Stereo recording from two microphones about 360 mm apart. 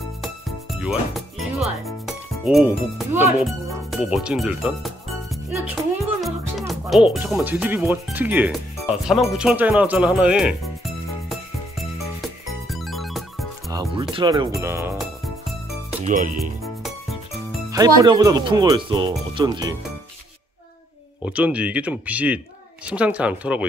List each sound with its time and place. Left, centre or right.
0.2 s speech: centre
11.8 s music: centre
14.1 s speech: centre
16.0 s speech: right
17.5 s speech: centre
21.2 s speech: centre